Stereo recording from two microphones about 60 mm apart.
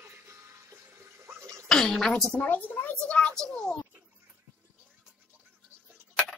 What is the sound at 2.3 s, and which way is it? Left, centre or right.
Speech, left.